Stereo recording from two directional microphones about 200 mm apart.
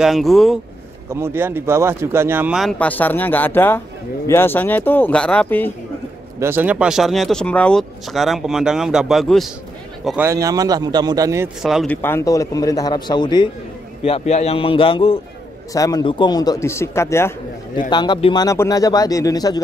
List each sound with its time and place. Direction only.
0.0 s speech: centre (ahead or behind)
1.1 s a man's voice: 10° right (ahead or behind); by 5.7 s 5° left (ahead or behind)
6.4 s a man's voice: 10° right (ahead or behind)
11.6 s a man's voice: centre (ahead or behind); by 13.5 s 20° left (ahead or behind)
14.0 s a man's voice: 30° left (ahead or behind)